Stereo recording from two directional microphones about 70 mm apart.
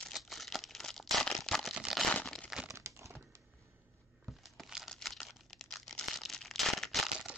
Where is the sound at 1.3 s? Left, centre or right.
Centre.